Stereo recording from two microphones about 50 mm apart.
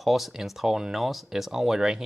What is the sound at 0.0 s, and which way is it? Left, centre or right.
Speech, centre.